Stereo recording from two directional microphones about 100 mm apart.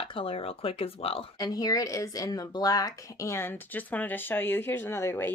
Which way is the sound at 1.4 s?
40° left (ahead or behind).